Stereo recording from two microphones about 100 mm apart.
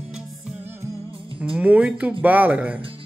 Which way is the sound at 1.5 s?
15° right (ahead or behind).